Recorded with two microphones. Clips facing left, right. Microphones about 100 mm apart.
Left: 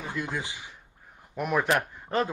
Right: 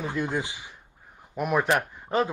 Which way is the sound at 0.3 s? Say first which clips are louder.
Right 4 dB; 20° right (ahead or behind).